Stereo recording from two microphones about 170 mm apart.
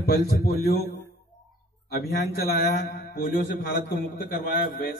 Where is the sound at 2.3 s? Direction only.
65° left (ahead or behind).